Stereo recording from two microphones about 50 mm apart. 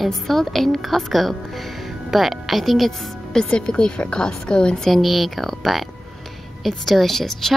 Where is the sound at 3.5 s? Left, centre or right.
Centre.